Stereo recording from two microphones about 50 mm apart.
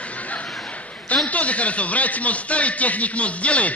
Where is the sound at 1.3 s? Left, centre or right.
Left.